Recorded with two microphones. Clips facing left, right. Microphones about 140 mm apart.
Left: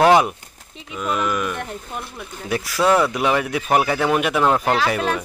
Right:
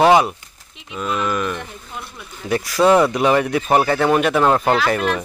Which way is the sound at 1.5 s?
55° left (ahead or behind).